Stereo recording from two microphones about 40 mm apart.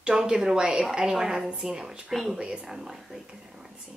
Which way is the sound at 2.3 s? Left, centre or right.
Right.